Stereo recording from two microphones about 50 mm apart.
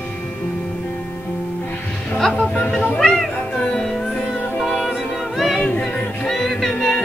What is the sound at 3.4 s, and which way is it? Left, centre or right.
Music, left.